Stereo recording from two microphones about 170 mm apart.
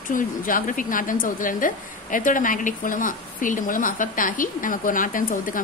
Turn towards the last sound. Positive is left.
turn(degrees=50)  # may be behind; listen again after turning